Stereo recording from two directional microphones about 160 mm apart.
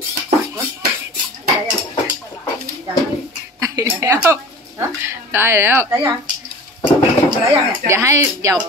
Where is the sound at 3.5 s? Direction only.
20° right (ahead or behind).